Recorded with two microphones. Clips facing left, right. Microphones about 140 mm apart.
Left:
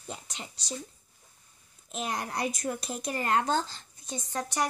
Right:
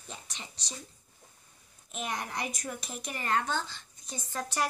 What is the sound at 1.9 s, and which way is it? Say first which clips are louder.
A woman's voice: left 3 dB; 35° left (ahead or behind).